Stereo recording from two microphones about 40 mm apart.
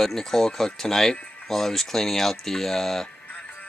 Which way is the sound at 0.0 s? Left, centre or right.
Centre.